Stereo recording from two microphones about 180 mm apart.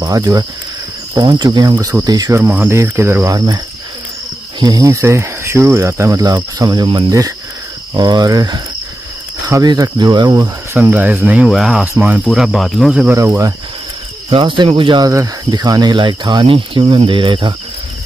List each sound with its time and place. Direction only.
0.0 s speech: 20° right (ahead or behind)
14.3 s speech: 25° right (ahead or behind)